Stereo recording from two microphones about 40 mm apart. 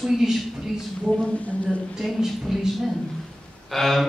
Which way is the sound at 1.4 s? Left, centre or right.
Left.